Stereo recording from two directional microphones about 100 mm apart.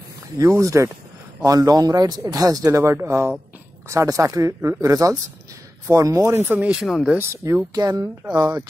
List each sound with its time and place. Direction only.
0.4 s speech: 30° right (ahead or behind)
6.4 s speech: 15° right (ahead or behind)
6.8 s speech: 5° right (ahead or behind)
7.2 s speech: 25° right (ahead or behind)
7.7 s speech: 35° right (ahead or behind)